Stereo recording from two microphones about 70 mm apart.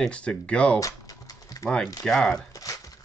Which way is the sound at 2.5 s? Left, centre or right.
Left.